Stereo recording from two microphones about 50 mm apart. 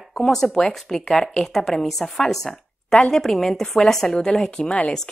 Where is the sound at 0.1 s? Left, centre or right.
Centre.